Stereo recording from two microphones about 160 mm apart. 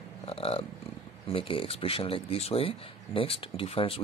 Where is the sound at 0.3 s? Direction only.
35° left (ahead or behind).